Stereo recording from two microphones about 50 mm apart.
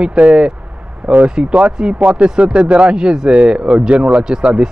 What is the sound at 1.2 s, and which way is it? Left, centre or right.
Speech, centre.